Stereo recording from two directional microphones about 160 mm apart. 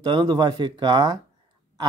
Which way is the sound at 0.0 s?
25° right (ahead or behind).